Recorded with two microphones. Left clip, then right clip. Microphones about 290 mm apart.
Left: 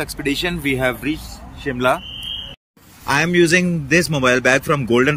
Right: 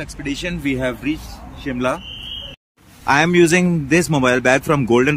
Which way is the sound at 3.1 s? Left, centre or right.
Centre.